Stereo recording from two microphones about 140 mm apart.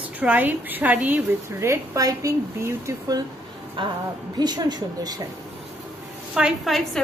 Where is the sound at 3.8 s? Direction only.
35° right (ahead or behind).